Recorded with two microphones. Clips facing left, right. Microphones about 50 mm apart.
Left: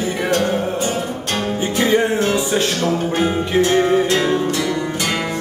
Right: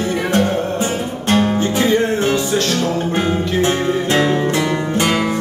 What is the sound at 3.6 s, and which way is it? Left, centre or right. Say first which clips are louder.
Music: left 5 dB; right.